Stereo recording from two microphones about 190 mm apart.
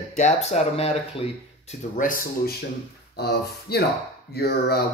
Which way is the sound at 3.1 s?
55° left (ahead or behind).